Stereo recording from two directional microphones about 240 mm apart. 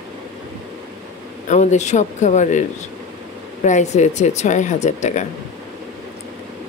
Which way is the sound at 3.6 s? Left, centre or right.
Left.